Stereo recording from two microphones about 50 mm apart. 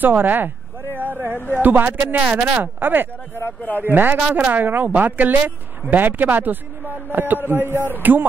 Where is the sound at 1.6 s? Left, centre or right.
Right.